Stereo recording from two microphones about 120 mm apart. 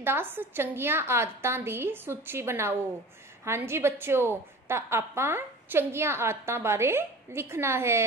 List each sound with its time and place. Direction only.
0.0 s a woman's voice: 20° right (ahead or behind)